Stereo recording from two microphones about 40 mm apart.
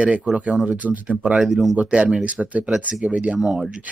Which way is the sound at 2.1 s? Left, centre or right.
Centre.